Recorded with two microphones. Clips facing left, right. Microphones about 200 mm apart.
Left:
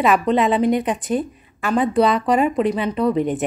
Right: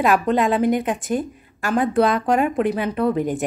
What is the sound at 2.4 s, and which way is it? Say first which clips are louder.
Speech: left 1 dB; 55° right (ahead or behind).